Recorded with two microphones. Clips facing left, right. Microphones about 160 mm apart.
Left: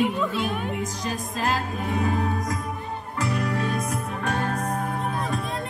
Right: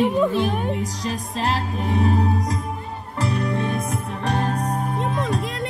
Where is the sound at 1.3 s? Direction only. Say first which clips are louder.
Right 2 dB; 30° right (ahead or behind).